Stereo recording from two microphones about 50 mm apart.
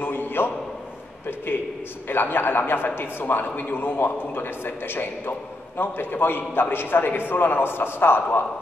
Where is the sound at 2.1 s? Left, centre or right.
Left.